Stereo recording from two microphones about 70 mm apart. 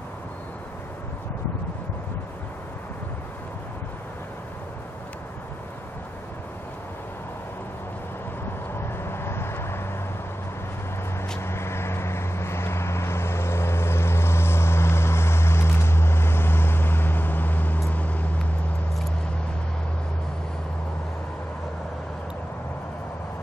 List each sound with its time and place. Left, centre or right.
8.9 s vehicle: left
11.3 s vehicle: left